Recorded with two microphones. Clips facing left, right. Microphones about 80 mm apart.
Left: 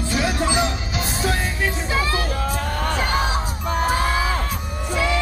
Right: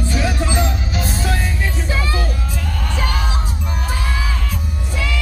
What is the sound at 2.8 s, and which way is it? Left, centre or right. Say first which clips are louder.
Music: left 2 dB; left.